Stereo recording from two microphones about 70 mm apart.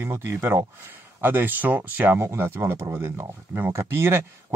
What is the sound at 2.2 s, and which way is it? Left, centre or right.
Speech, right.